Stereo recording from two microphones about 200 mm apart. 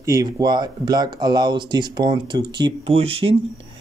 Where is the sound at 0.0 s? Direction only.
15° right (ahead or behind).